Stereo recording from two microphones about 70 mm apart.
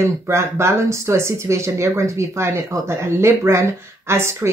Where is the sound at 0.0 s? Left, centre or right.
Right.